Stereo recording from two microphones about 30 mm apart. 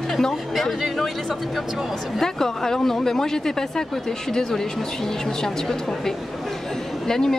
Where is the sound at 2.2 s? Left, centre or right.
Centre.